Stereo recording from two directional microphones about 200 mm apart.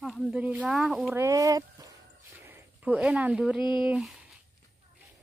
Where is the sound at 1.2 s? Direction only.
15° right (ahead or behind).